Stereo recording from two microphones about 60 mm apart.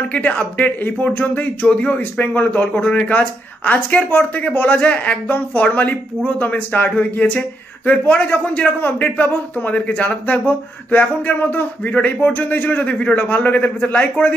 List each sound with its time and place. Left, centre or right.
0.1 s a man's voice: left